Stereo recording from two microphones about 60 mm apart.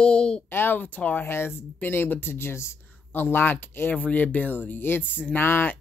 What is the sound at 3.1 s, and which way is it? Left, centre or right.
Speech, left.